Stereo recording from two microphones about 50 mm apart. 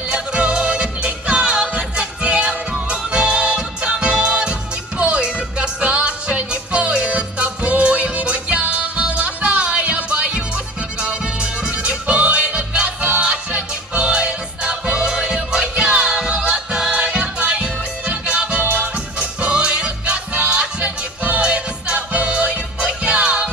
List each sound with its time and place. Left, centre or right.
0.1 s music: right